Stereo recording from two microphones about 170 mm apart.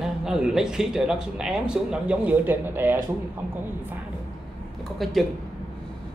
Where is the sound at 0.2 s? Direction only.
5° right (ahead or behind).